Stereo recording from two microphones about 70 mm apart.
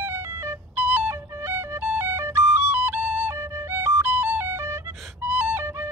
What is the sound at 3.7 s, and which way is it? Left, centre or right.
Music, right.